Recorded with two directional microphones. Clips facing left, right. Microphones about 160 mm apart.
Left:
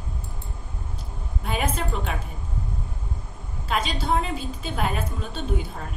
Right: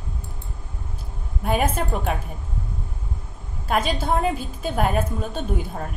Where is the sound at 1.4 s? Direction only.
50° right (ahead or behind).